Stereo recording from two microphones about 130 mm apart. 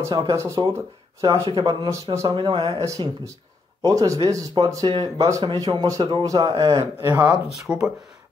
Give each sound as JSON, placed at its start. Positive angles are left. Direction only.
{"t": 0.0, "sound": "speech", "side_deg": -30}
{"t": 7.2, "sound": "speech", "side_deg": -5}